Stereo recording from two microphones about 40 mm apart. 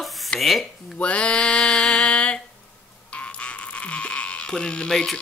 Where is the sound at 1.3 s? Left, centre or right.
Centre.